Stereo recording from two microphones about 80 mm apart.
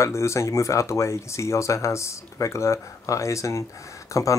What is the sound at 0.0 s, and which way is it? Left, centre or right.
Speech, left.